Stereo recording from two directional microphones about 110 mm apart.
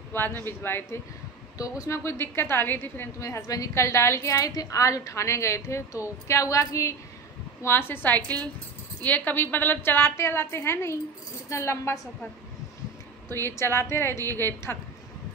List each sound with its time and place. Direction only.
0.1 s a woman's voice: 20° left (ahead or behind)
13.3 s a woman's voice: 25° left (ahead or behind)